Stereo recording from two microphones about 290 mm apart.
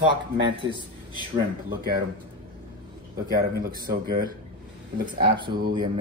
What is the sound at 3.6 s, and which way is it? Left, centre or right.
Speech, right.